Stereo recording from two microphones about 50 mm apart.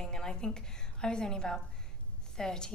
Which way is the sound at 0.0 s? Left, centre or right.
Centre.